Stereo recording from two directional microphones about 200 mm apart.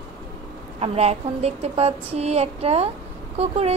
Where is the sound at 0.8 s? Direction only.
30° right (ahead or behind).